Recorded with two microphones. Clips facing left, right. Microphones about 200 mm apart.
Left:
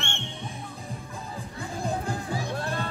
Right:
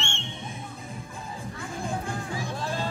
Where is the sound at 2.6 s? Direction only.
60° left (ahead or behind).